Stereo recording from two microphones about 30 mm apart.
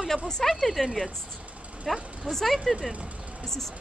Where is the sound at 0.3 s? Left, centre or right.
Centre.